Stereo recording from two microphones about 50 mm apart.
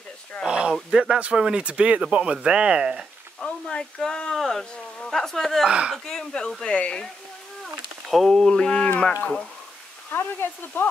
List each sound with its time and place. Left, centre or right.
0.5 s a sound: centre
0.8 s speech: centre
3.3 s speech: centre
5.7 s speech: right
6.0 s speech: centre
8.1 s speech: centre
8.5 s speech: centre
10.1 s speech: left